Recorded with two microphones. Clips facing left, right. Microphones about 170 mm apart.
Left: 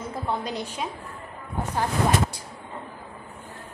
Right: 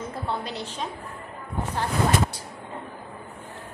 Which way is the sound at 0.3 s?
15° left (ahead or behind).